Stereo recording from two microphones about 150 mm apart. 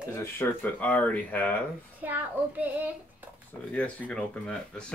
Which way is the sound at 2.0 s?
10° right (ahead or behind).